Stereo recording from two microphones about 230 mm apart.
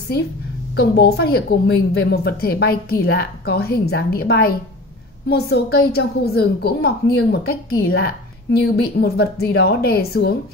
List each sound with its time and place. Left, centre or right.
0.7 s a woman's voice: left